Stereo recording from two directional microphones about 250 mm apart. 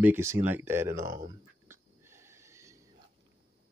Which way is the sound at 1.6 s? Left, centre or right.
Centre.